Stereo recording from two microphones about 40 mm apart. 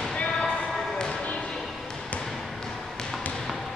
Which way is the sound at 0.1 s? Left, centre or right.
Left.